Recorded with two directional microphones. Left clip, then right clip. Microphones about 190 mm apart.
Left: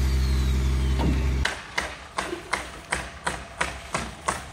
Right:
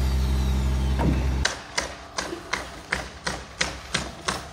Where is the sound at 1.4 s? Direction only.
25° right (ahead or behind).